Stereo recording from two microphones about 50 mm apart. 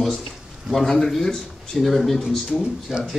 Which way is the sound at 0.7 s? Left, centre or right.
Centre.